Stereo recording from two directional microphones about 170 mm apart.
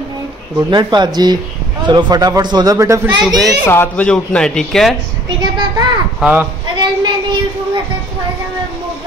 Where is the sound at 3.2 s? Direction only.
Centre (ahead or behind).